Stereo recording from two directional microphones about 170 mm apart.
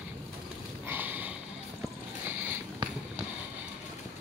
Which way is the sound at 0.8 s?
10° right (ahead or behind).